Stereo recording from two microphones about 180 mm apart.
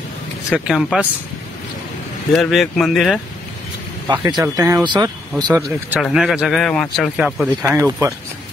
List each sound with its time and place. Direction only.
0.5 s speech: centre (ahead or behind)
2.3 s speech: centre (ahead or behind)
4.1 s speech: 25° right (ahead or behind)
5.5 s speech: 10° right (ahead or behind)
7.6 s speech: 15° right (ahead or behind)